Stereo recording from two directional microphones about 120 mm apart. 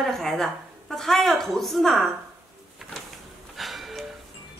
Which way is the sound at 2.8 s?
Centre (ahead or behind).